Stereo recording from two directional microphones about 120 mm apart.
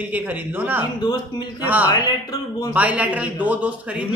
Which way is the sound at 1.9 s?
30° left (ahead or behind).